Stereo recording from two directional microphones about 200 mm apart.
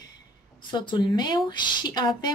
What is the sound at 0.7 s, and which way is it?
A woman's voice, 25° left (ahead or behind).